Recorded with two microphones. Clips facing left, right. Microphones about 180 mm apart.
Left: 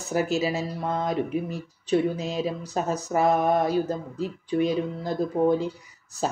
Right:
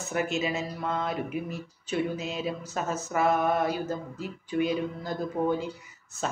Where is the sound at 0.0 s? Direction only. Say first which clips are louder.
Left 4 dB; 35° left (ahead or behind).